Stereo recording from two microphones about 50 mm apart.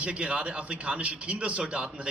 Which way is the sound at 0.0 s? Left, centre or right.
Right.